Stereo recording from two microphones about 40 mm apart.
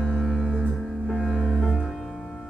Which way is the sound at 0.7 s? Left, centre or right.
Centre.